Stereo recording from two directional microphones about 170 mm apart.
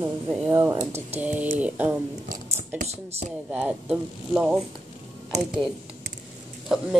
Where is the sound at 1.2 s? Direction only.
10° right (ahead or behind).